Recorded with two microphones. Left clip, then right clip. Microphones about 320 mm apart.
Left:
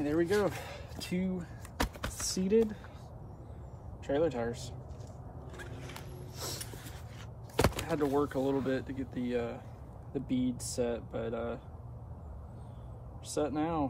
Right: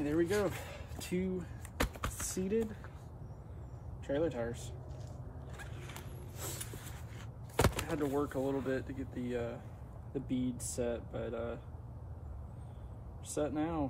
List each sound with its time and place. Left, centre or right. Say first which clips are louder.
0.0 s vehicle: left 3 dB; centre
2.3 s speech: left 8 dB; centre
4.1 s speech: left 4 dB; centre
5.6 s a sound: left 3 dB; centre
7.5 s a sound: left 2 dB; centre
7.9 s speech: left 4 dB; centre
13.3 s speech: left 3 dB; centre